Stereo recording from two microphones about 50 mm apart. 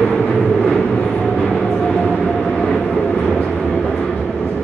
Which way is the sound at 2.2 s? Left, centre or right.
Centre.